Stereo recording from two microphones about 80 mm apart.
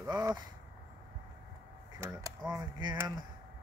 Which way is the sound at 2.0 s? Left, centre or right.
Right.